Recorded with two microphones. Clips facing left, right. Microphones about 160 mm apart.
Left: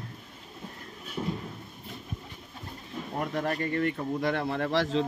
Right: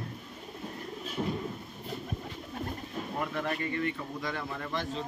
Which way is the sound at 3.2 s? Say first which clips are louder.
Left 4 dB; 40° left (ahead or behind).